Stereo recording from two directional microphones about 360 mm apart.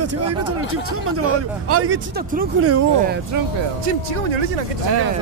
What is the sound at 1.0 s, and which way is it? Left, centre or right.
A man's voice, right.